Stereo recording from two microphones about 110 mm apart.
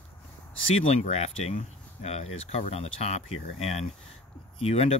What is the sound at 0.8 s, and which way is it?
Speech, 85° left.